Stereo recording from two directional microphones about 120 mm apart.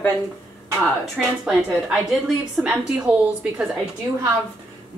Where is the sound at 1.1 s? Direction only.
5° right (ahead or behind).